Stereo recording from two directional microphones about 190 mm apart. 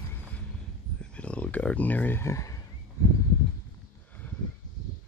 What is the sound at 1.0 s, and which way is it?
Fowl, 5° left (ahead or behind).